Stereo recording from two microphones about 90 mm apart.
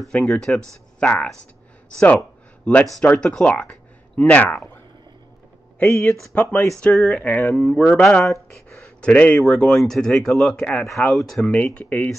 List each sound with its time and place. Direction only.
0.1 s speech: 5° left (ahead or behind)
5.9 s speech: 30° left (ahead or behind)
6.8 s speech: 5° left (ahead or behind)
7.2 s speech: 20° left (ahead or behind)
7.5 s speech: 10° left (ahead or behind)
9.0 s speech: 15° left (ahead or behind)
11.5 s speech: 15° left (ahead or behind)